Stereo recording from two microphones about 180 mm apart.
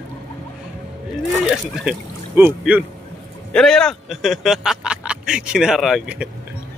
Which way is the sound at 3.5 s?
5° left (ahead or behind).